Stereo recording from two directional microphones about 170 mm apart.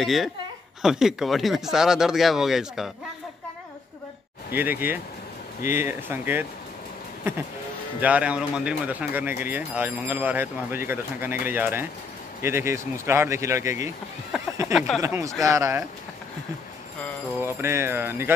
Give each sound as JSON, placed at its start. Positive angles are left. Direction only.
{"t": 0.0, "sound": "speech", "side_deg": 0}
{"t": 4.6, "sound": "speech", "side_deg": -10}
{"t": 8.0, "sound": "speech", "side_deg": -10}
{"t": 14.3, "sound": "a sound", "side_deg": 0}
{"t": 14.7, "sound": "speech", "side_deg": 0}
{"t": 15.0, "sound": "speech", "side_deg": -20}
{"t": 17.4, "sound": "speech", "side_deg": -15}